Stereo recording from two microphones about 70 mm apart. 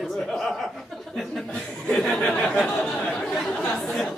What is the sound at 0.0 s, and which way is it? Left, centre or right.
Chuckle, centre.